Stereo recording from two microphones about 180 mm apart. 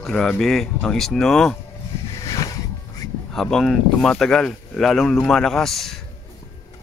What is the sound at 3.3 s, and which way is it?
Speech, centre (ahead or behind).